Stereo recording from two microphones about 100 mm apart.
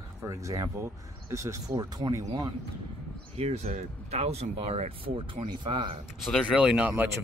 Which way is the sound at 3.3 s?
90° right.